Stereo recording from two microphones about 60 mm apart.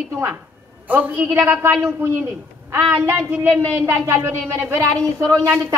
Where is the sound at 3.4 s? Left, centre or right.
Right.